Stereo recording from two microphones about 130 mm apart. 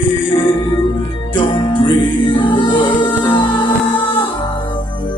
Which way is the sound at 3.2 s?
15° left (ahead or behind).